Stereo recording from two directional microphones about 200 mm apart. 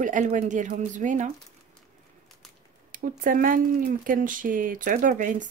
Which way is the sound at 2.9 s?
45° right (ahead or behind).